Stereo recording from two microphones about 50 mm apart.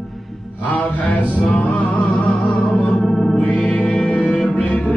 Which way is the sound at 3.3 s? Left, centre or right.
Left.